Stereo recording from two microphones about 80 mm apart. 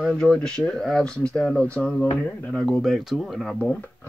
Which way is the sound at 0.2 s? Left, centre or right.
Centre.